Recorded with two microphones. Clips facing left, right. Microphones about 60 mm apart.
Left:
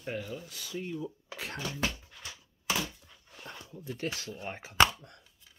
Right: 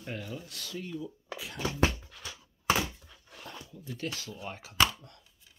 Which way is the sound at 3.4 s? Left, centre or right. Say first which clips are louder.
Left 2 dB; left.